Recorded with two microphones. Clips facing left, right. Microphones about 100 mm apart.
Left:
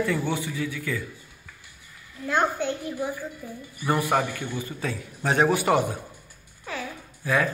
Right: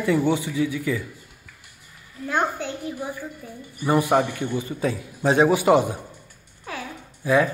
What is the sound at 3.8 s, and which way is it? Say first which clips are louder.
Speech: right 4 dB; 20° right (ahead or behind).